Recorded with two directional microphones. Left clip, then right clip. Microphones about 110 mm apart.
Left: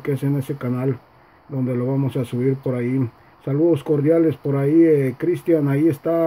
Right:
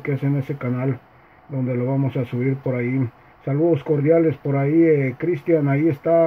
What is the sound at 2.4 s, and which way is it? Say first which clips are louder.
Speech: left 2 dB; 20° left (ahead or behind).